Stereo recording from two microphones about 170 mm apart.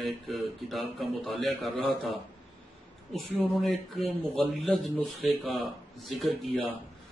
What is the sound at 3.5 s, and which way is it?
Speech, centre (ahead or behind).